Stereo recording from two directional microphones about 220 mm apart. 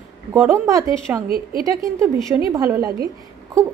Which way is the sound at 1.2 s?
40° right (ahead or behind).